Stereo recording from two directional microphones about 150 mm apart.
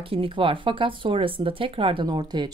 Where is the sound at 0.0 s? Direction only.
40° right (ahead or behind).